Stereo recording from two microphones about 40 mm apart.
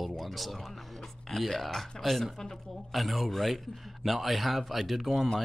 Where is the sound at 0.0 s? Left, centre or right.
Centre.